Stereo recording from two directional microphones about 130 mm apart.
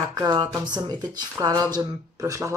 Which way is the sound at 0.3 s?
35° right (ahead or behind).